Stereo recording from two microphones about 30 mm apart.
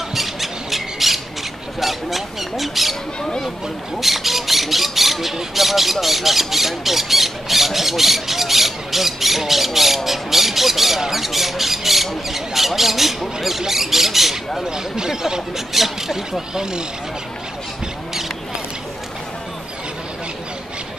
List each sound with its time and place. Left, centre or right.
0.1 s squawk: centre
3.2 s a sound: left
4.0 s speech: centre
10.0 s squawk: centre
13.4 s a sound: centre
14.6 s speech: right
15.7 s speech: centre